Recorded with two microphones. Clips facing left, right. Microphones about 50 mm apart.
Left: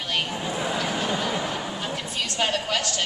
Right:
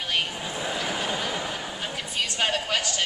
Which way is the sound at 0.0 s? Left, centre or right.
Centre.